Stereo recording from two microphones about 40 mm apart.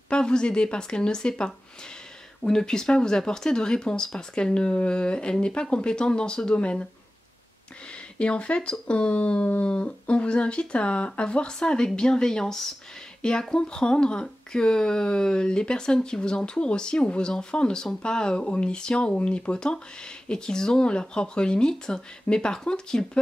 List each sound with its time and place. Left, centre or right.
0.1 s speech: left
8.2 s speech: left